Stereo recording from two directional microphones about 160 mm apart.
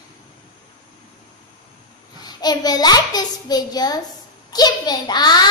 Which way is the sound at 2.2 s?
25° left (ahead or behind).